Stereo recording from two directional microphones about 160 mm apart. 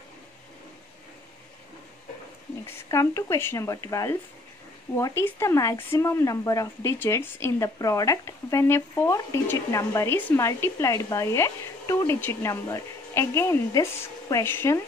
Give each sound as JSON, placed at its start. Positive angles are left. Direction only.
{"t": 2.6, "sound": "speech", "side_deg": 20}